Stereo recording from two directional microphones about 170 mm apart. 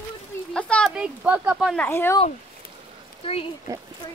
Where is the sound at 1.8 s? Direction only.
15° left (ahead or behind).